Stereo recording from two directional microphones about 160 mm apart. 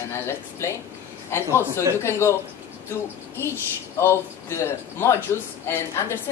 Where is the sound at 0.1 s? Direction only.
15° left (ahead or behind).